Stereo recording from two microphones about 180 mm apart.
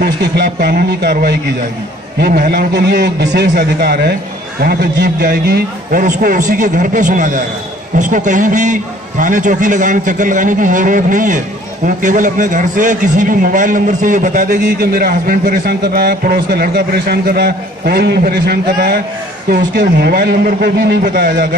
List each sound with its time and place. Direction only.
0.0 s a man's voice: 65° right (ahead or behind)